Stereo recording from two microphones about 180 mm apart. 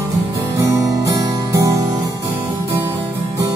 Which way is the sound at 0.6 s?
15° right (ahead or behind).